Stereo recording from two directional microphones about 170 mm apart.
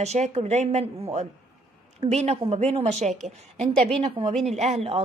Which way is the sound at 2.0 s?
40° right (ahead or behind).